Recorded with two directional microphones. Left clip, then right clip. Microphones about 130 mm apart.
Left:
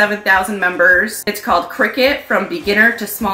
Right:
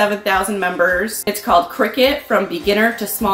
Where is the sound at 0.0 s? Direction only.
15° right (ahead or behind).